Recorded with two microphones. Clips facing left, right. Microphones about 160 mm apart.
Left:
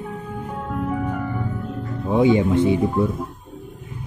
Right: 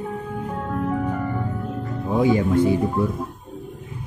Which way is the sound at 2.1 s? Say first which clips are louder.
Left 2 dB; 25° left (ahead or behind).